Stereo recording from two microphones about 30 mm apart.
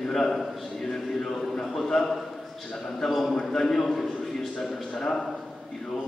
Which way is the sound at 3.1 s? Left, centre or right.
Centre.